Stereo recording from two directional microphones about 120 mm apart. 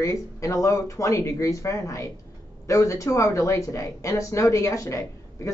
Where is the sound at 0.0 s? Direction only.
25° left (ahead or behind).